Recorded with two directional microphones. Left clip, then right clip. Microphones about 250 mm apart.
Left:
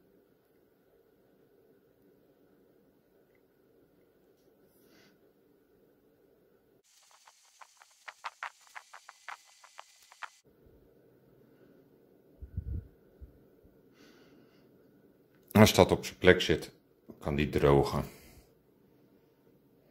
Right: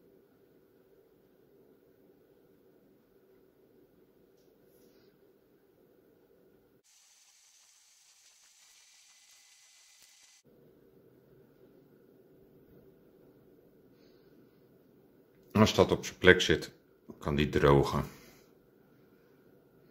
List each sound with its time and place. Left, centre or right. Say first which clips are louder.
7.2 s engine: left 6 dB; centre
15.5 s speech: left 3 dB; left
16.0 s speech: right 1 dB; centre